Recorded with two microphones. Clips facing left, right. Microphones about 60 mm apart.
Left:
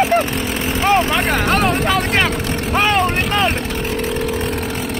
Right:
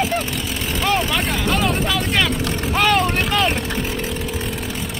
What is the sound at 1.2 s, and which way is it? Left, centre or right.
Vehicle, left.